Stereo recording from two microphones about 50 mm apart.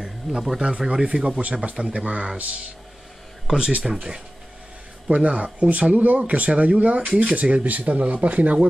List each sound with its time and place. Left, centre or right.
0.0 s a sound: centre
0.6 s speech: centre
1.1 s speech: centre
1.5 s speech: centre
3.5 s speech: centre
3.8 s speech: centre
5.0 s speech: right